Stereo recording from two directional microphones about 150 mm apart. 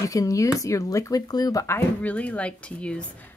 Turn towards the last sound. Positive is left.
turn(degrees=5)  # may be behind; listen again after turning